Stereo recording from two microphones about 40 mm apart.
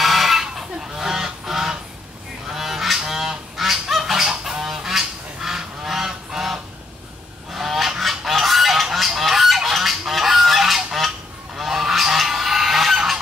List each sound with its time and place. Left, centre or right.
0.0 s fowl: centre
2.4 s goose: centre